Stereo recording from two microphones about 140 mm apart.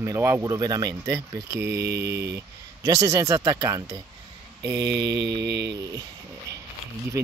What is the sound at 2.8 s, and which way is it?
Speech, 25° right (ahead or behind).